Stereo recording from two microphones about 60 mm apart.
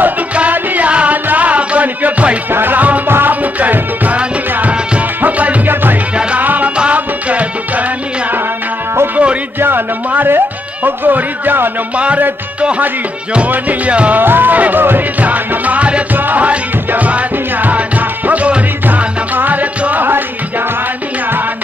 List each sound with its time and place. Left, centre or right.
0.0 s music: right
9.1 s music: right
9.6 s music: right
12.0 s music: right
14.2 s music: right